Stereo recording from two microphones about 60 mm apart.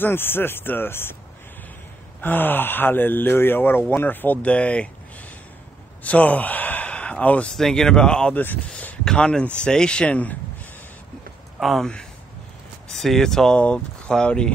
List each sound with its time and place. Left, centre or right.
0.0 s speech: left
2.2 s speech: left
6.0 s speech: left
7.5 s speech: centre
11.6 s speech: centre
12.9 s speech: centre